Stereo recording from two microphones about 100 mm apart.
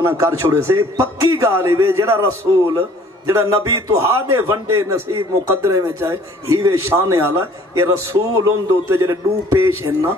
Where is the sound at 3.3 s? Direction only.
30° right (ahead or behind).